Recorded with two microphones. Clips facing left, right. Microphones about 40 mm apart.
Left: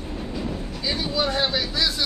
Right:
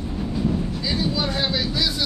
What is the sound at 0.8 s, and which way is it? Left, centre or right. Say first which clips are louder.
Speech: left 2 dB; centre.